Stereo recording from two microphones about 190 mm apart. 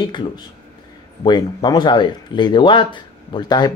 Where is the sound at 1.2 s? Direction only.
25° left (ahead or behind).